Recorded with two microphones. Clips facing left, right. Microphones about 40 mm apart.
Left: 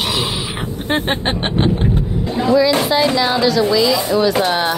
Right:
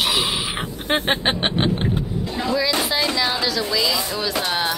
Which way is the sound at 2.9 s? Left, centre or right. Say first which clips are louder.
Left 6 dB; centre.